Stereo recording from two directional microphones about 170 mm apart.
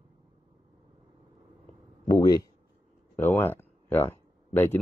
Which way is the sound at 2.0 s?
20° left (ahead or behind).